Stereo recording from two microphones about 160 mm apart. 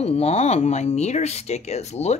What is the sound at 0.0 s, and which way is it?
Speech, 40° left (ahead or behind).